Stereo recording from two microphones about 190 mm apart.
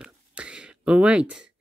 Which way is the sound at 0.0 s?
5° right (ahead or behind).